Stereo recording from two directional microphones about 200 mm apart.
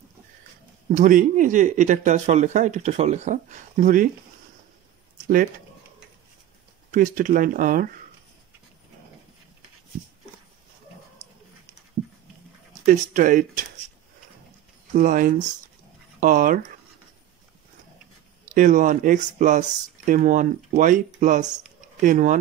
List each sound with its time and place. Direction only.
0.9 s speech: 40° right (ahead or behind)
6.9 s speech: 40° right (ahead or behind)
12.8 s speech: 40° right (ahead or behind)
15.0 s speech: 40° right (ahead or behind)
18.4 s speech: 40° right (ahead or behind)